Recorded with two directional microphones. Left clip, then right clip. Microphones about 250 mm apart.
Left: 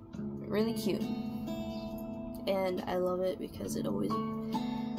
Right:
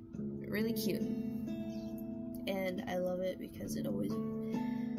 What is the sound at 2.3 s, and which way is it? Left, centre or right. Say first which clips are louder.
Speech: left 6 dB; centre.